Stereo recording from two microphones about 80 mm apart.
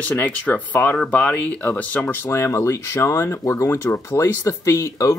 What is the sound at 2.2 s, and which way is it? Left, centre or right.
Speech, left.